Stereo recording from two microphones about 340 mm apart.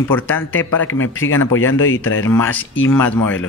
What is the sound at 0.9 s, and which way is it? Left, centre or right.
Speech, left.